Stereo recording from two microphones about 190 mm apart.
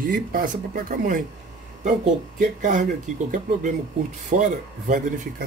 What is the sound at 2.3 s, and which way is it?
Speech, 45° right (ahead or behind).